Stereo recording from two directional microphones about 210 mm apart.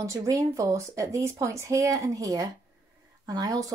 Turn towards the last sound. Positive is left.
turn(degrees=-15)  # may be behind; listen again after turning